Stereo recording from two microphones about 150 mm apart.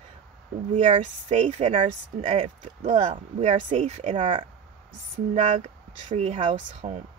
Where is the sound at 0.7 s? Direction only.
55° right (ahead or behind); by 4.4 s 35° right (ahead or behind).